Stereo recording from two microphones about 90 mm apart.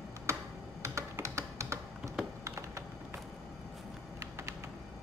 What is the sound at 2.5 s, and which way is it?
Computer keyboard, 35° right (ahead or behind).